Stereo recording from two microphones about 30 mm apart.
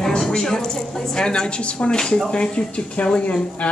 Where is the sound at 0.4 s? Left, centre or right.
Left.